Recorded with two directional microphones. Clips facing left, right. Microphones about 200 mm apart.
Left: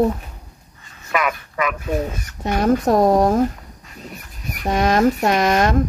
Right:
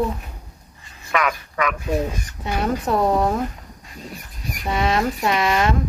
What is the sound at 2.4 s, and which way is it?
A woman's voice, 45° left (ahead or behind).